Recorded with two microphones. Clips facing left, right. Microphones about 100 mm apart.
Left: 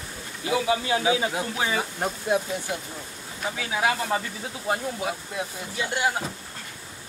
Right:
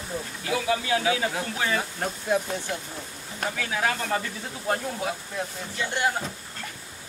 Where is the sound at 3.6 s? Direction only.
10° left (ahead or behind).